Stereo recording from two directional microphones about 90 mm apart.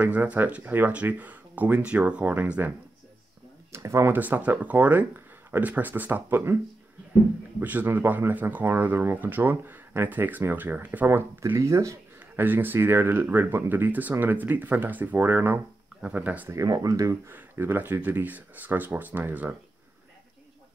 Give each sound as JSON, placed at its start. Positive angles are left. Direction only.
{"t": 0.0, "sound": "speech", "side_deg": -15}
{"t": 3.7, "sound": "speech", "side_deg": -30}
{"t": 7.6, "sound": "speech", "side_deg": -20}
{"t": 12.4, "sound": "speech", "side_deg": -20}
{"t": 16.4, "sound": "speech", "side_deg": -40}
{"t": 17.3, "sound": "speech", "side_deg": -20}